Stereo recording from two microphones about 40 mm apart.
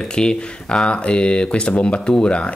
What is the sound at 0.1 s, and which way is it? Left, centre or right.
Speech, left.